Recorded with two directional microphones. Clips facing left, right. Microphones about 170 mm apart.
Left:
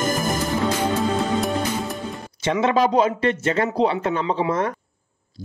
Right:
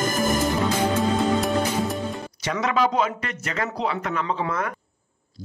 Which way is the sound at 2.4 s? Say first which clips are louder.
Left 4 dB; 25° left (ahead or behind).